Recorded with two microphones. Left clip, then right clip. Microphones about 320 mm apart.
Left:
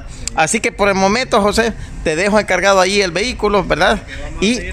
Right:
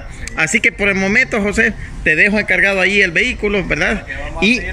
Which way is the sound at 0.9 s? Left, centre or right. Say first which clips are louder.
Left 3 dB; left.